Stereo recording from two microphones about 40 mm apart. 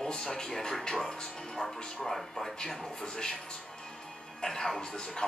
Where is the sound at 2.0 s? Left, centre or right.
Centre.